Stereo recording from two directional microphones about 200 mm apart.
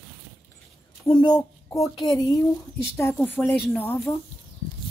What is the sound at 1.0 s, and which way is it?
A woman's voice, 20° left (ahead or behind).